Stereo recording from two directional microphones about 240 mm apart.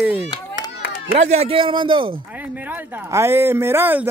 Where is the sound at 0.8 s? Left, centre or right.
Left.